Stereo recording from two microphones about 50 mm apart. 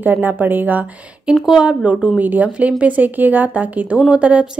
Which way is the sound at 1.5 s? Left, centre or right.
Centre.